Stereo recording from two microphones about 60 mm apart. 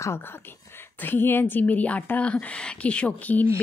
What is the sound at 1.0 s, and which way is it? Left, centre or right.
A woman's voice, left.